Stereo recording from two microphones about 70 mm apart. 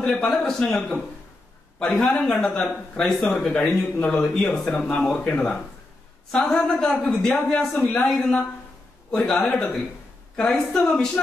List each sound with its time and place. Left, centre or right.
0.0 s a woman's voice: centre
1.8 s a woman's voice: centre
3.3 s a woman's voice: centre